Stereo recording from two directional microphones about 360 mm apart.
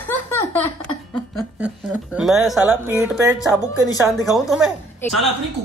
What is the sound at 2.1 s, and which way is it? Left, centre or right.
A woman's voice, centre.